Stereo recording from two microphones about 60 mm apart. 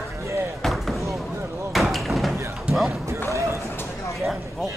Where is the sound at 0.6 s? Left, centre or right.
Centre.